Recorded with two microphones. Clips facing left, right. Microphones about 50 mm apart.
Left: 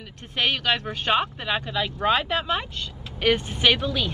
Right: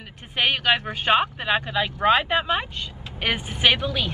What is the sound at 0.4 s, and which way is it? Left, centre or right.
Speech, centre.